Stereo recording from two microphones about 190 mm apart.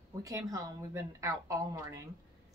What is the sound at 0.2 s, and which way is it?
A woman's voice, 20° right (ahead or behind).